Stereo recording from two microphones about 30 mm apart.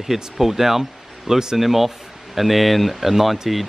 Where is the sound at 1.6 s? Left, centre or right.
Centre.